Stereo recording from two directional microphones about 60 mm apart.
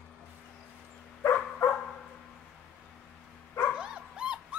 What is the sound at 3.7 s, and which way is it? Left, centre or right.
Dog, centre.